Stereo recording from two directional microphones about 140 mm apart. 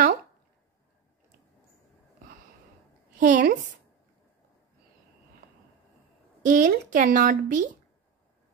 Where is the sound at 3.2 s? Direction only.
70° right (ahead or behind).